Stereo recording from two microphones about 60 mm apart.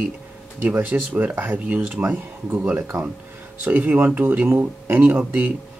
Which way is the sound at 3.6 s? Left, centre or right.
Right.